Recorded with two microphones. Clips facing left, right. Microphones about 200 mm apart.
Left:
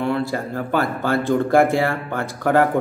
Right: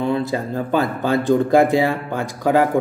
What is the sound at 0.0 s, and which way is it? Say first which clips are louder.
A man's voice: right 1 dB; 20° right (ahead or behind).